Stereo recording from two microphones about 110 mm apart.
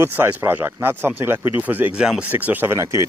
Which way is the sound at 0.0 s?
20° right (ahead or behind).